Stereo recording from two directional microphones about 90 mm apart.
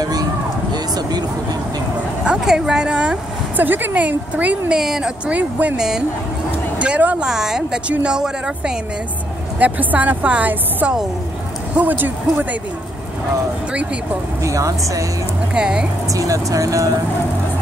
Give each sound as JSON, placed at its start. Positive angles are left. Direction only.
{"t": 0.0, "sound": "a sound", "side_deg": -45}
{"t": 0.7, "sound": "vehicle", "side_deg": -50}
{"t": 2.2, "sound": "a woman's voice", "side_deg": -10}
{"t": 9.6, "sound": "a woman's voice", "side_deg": -20}
{"t": 14.4, "sound": "speech", "side_deg": -40}
{"t": 15.5, "sound": "a woman's voice", "side_deg": -10}
{"t": 16.1, "sound": "speech", "side_deg": -40}